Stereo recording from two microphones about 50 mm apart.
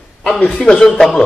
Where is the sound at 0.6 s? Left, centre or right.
Centre.